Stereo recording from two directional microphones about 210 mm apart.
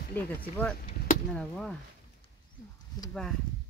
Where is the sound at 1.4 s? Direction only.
5° left (ahead or behind).